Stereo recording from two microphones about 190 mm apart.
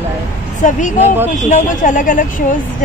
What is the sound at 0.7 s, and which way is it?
Speech, 40° left (ahead or behind).